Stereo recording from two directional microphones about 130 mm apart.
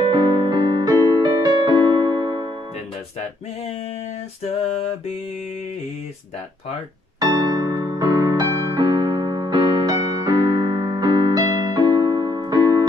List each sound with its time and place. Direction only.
0.1 s music: 35° right (ahead or behind)
0.9 s music: 30° right (ahead or behind)
7.2 s music: 30° right (ahead or behind)